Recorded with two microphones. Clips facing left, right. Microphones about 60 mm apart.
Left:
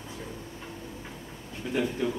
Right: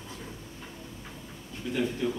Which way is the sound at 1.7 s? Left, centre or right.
Centre.